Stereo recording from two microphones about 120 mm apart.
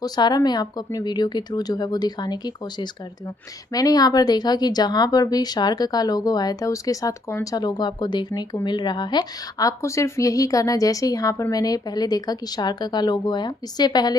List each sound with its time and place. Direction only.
0.0 s speech: 35° left (ahead or behind)
7.5 s a woman's voice: 35° left (ahead or behind)